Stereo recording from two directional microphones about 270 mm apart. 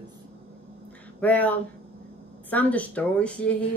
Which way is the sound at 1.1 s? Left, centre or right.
Centre.